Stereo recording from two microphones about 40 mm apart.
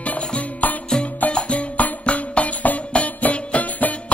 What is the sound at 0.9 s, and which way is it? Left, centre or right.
Music, centre.